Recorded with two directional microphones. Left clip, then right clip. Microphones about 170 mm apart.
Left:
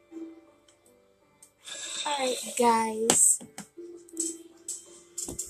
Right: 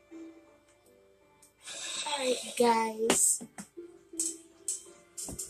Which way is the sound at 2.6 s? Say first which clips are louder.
Left 3 dB; 40° left (ahead or behind).